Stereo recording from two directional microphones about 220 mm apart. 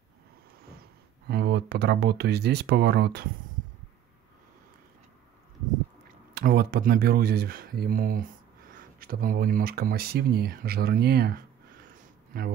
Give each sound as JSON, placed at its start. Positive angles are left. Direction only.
{"t": 1.2, "sound": "speech", "side_deg": -50}
{"t": 6.3, "sound": "speech", "side_deg": -45}
{"t": 12.0, "sound": "a sound", "side_deg": -40}